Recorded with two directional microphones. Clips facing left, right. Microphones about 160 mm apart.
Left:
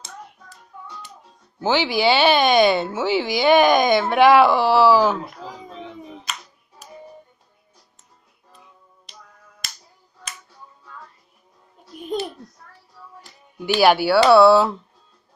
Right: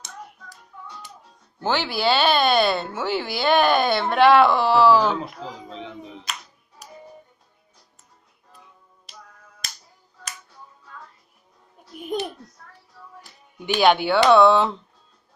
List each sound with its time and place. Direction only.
1.6 s speech: 10° left (ahead or behind)
9.1 s finger snapping: 5° right (ahead or behind)
12.0 s a sound: 15° right (ahead or behind)
13.7 s speech: 5° left (ahead or behind)